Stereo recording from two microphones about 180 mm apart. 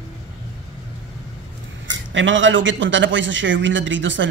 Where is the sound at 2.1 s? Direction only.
90° right.